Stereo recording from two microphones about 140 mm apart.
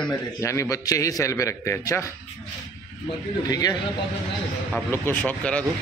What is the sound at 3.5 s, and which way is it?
Speech, 25° left (ahead or behind).